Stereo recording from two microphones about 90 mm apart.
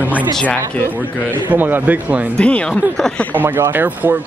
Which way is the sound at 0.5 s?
20° left (ahead or behind).